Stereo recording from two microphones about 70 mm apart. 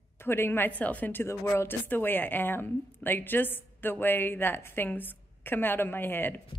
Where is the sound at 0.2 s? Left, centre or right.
Left.